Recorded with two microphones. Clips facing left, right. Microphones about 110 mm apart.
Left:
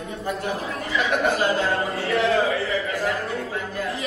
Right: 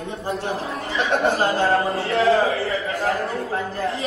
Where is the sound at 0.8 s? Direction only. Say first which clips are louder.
Right 2 dB; 30° right (ahead or behind).